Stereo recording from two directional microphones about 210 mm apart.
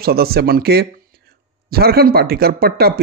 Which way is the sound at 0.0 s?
45° right (ahead or behind).